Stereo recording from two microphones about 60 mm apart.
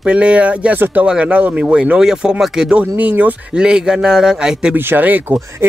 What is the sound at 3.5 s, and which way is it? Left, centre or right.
A man's voice, centre.